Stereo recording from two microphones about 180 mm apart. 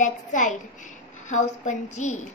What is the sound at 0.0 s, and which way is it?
A child's voice, 45° left (ahead or behind).